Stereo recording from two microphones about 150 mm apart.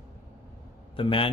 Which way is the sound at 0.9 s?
35° left (ahead or behind).